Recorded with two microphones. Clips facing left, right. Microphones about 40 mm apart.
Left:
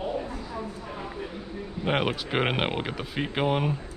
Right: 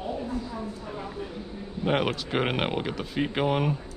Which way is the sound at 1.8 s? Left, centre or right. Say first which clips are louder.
Right 1 dB; centre.